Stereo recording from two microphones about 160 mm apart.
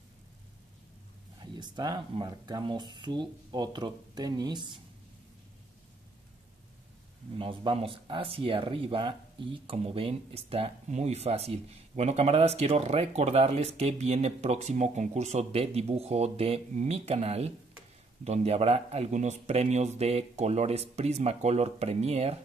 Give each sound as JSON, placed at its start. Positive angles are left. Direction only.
{"t": 1.4, "sound": "speech", "side_deg": -25}
{"t": 7.3, "sound": "speech", "side_deg": -35}